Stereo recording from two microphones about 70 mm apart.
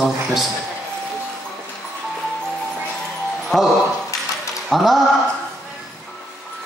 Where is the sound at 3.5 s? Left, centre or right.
Centre.